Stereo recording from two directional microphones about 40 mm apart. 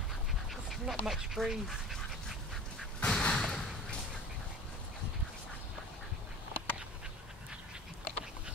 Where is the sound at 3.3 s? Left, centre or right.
Centre.